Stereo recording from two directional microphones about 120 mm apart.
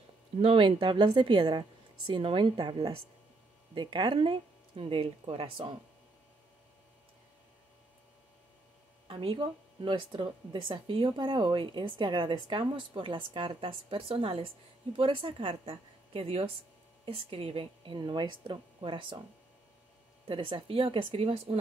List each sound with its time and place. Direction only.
0.4 s speech: 50° right (ahead or behind)
9.0 s speech: 50° right (ahead or behind)
20.2 s speech: 45° right (ahead or behind)